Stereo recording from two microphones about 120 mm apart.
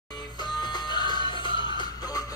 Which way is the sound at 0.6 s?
35° left (ahead or behind).